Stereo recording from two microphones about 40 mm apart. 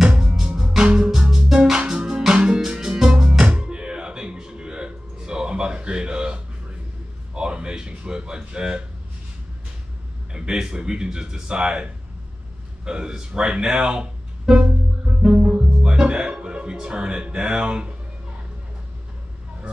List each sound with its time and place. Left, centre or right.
0.0 s music: right
7.3 s a sound: right
10.3 s speech: right
15.1 s music: centre
15.4 s speech: right